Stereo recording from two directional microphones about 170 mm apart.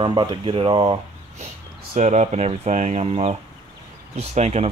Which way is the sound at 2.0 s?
45° right (ahead or behind).